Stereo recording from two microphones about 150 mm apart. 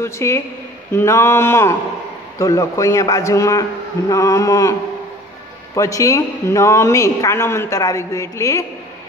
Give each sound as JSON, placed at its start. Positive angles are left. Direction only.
{"t": 0.0, "sound": "a woman's voice", "side_deg": 15}
{"t": 5.8, "sound": "a woman's voice", "side_deg": 20}